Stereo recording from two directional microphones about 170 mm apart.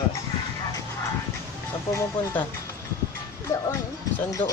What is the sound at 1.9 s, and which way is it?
Speech, 15° left (ahead or behind).